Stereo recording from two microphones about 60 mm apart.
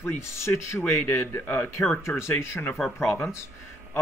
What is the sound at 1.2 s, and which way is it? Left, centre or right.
Speech, left.